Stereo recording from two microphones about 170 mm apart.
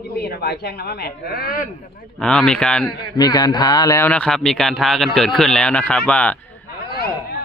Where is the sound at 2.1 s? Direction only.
5° left (ahead or behind).